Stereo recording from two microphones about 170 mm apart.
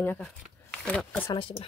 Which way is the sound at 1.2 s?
30° left (ahead or behind).